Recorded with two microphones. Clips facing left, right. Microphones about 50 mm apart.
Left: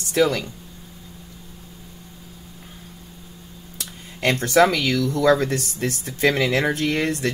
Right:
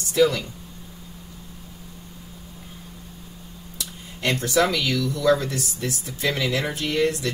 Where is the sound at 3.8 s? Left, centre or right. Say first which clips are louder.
Left 3 dB; left.